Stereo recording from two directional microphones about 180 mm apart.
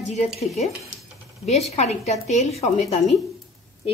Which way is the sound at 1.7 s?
35° left (ahead or behind).